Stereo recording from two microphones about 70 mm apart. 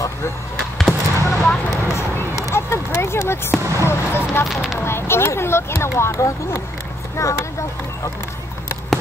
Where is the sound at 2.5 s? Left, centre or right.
Left.